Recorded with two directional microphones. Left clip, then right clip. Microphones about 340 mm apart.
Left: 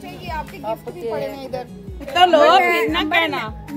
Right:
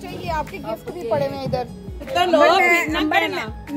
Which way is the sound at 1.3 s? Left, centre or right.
Right.